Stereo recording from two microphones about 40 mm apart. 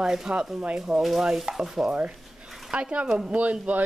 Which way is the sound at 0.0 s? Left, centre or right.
Centre.